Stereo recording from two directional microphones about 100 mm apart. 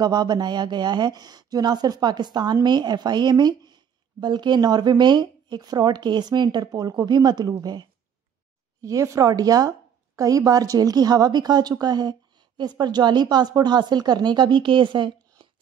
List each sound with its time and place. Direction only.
0.0 s speech: 45° right (ahead or behind)
8.8 s speech: 30° right (ahead or behind); by 15.4 s 55° right (ahead or behind)